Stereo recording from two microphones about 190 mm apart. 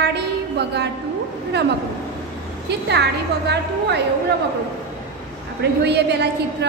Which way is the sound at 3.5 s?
65° right (ahead or behind).